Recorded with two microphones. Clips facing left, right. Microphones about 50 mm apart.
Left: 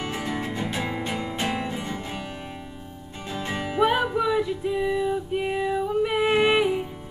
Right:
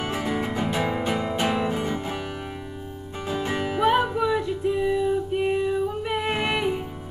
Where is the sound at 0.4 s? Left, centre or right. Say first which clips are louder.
Right 3 dB; centre.